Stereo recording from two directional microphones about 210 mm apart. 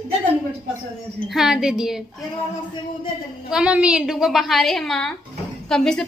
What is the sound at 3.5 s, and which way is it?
A woman's voice, 5° right (ahead or behind).